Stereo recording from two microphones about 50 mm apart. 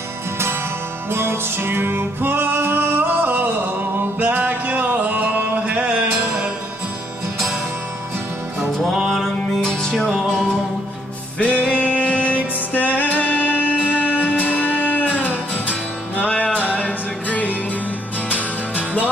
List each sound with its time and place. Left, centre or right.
1.1 s music: right
8.8 s music: centre
11.3 s music: left
13.8 s music: right
14.3 s music: left